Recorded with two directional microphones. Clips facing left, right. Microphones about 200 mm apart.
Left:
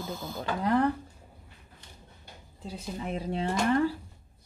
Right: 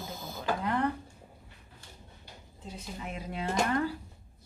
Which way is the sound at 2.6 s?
35° left (ahead or behind).